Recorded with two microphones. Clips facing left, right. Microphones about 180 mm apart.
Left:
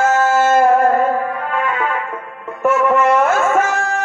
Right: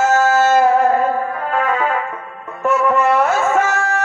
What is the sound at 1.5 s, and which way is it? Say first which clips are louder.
Music: right 5 dB; 40° right (ahead or behind).